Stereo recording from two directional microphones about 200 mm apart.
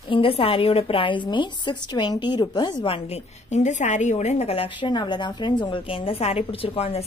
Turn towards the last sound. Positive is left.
turn(degrees=30)  # may be behind; listen again after turning